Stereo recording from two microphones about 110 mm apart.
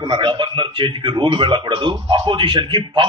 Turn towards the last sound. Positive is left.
turn(degrees=-45)  # may be behind; listen again after turning